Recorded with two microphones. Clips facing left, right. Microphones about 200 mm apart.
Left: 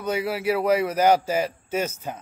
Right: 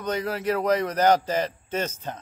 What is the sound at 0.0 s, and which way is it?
A man's voice, 10° left (ahead or behind).